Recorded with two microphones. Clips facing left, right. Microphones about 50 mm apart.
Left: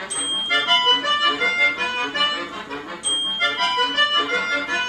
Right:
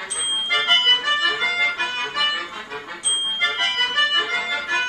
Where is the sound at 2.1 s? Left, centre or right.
Centre.